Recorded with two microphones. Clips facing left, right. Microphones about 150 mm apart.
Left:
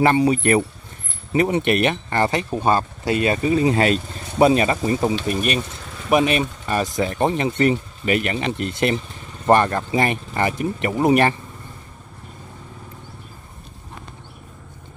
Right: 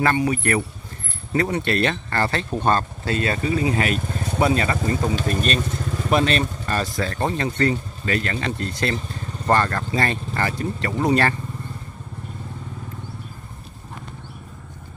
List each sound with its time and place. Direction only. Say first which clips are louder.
0.0 s speech: left 4 dB; 25° left (ahead or behind)
3.5 s speech: left 5 dB; 30° left (ahead or behind)